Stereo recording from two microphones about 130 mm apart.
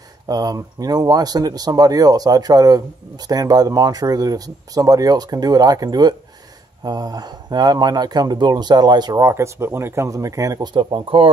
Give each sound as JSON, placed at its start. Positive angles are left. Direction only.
{"t": 0.3, "sound": "speech", "side_deg": -30}
{"t": 10.7, "sound": "speech", "side_deg": -40}